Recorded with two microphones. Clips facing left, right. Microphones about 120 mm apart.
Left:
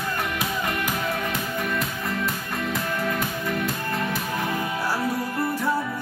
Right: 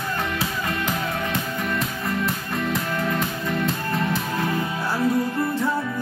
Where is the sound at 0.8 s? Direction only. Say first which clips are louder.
Right 1 dB; 25° right (ahead or behind).